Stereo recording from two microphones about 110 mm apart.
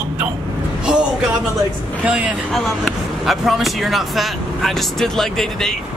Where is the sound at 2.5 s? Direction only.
Centre (ahead or behind).